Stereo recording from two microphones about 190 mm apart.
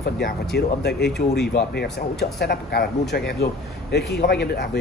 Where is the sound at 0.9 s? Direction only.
Centre (ahead or behind).